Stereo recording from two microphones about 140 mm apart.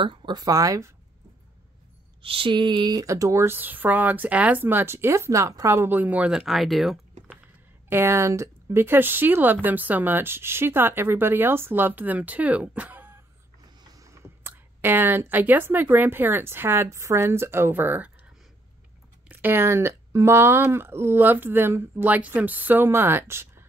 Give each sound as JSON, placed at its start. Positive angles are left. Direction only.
{"t": 0.0, "sound": "speech", "side_deg": -35}
{"t": 2.2, "sound": "speech", "side_deg": -40}
{"t": 7.9, "sound": "speech", "side_deg": -15}
{"t": 19.2, "sound": "speech", "side_deg": -15}